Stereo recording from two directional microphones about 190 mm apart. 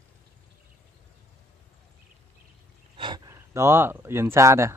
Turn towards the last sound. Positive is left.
turn(degrees=-15)  # may be behind; listen again after turning